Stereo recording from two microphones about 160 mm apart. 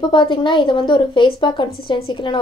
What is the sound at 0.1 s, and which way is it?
A woman's voice, 30° left (ahead or behind).